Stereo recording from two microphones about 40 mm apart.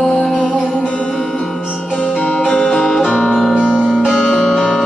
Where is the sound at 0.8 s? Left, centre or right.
Left.